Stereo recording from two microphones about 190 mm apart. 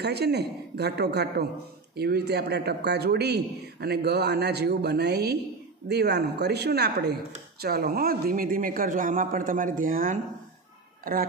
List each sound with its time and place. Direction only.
0.0 s a man's voice: 60° right (ahead or behind)